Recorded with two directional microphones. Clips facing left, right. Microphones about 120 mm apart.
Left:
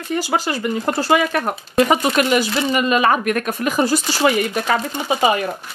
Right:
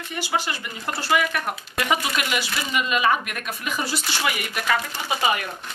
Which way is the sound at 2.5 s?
30° left (ahead or behind).